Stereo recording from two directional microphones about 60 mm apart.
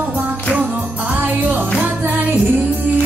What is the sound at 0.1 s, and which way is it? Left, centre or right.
Music, right.